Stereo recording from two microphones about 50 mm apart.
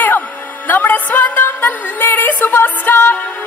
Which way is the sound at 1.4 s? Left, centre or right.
Left.